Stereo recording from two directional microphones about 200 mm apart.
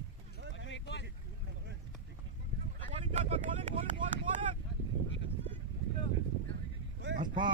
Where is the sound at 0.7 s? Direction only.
65° left (ahead or behind).